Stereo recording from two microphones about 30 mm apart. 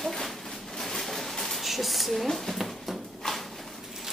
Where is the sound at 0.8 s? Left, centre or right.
Centre.